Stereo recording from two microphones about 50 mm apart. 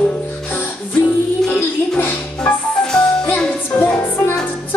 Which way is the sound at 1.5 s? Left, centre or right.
Left.